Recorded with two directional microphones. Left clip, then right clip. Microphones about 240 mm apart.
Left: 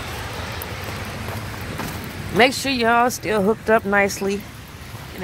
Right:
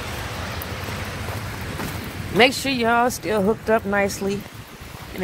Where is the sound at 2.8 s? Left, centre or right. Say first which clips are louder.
Left 2 dB; centre.